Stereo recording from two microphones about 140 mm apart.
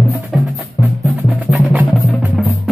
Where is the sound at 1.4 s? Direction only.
10° right (ahead or behind).